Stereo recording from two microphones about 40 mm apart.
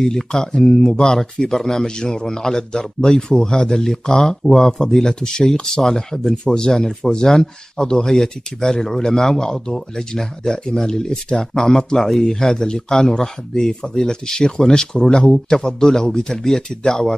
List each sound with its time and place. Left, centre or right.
0.0 s speech: centre